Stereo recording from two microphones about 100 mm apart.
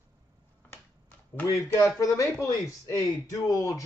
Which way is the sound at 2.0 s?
35° left (ahead or behind).